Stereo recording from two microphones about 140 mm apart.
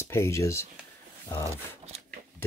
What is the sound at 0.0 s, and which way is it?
Speech, 20° left (ahead or behind).